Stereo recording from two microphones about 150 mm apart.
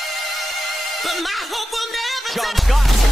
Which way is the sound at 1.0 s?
Centre (ahead or behind).